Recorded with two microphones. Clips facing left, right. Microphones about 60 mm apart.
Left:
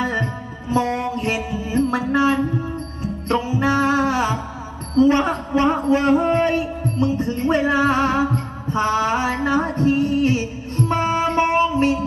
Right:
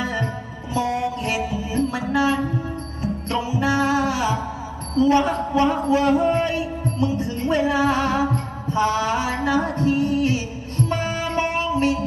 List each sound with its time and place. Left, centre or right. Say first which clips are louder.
0.0 s music: left 3 dB; left
4.9 s a man's voice: left 2 dB; left